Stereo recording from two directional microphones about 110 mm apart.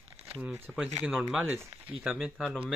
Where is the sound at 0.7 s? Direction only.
Centre (ahead or behind).